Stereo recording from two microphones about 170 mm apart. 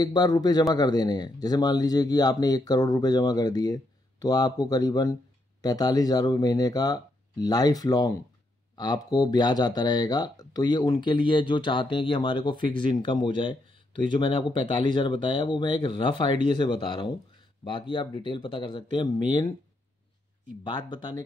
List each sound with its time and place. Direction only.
0.0 s speech: 25° left (ahead or behind)
20.6 s speech: 25° left (ahead or behind)